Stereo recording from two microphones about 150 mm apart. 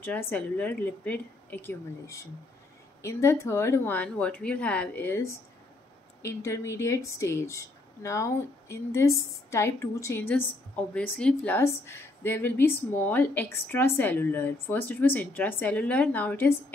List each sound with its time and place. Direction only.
0.0 s a woman's voice: 15° left (ahead or behind)